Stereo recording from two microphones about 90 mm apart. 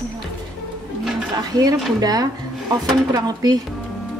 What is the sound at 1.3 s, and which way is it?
A woman's voice, 45° right (ahead or behind).